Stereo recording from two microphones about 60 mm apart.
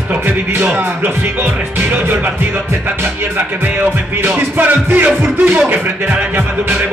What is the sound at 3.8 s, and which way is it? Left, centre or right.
Speech, right.